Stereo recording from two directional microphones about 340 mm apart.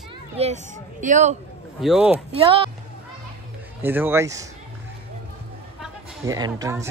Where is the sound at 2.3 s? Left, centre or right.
Centre.